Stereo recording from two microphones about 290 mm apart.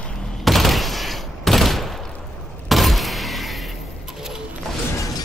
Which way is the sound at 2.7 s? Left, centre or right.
Centre.